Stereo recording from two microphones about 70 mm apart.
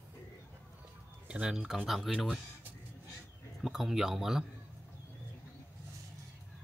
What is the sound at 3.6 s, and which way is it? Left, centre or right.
Speech, centre.